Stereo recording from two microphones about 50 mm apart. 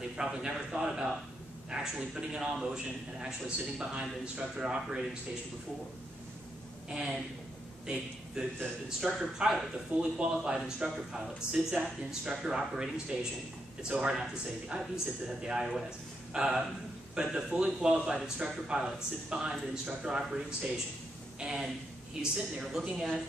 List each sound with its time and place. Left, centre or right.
0.2 s speech: centre
7.8 s a man's voice: centre
9.9 s speech: centre